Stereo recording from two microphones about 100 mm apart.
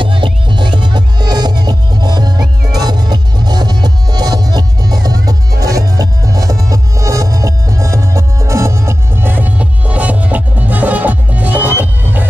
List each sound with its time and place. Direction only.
0.0 s music: 55° right (ahead or behind); by 12.3 s 20° right (ahead or behind)